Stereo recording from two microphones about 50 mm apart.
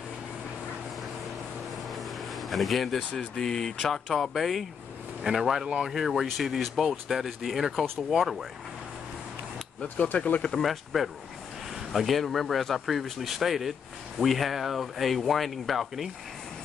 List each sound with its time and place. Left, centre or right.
1.9 s vehicle: centre
3.2 s speech: centre
10.1 s speech: left
10.6 s speech: centre